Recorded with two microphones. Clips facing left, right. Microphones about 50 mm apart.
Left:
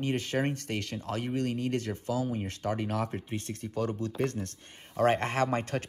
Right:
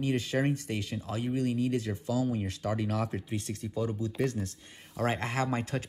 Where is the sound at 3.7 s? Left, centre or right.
Left.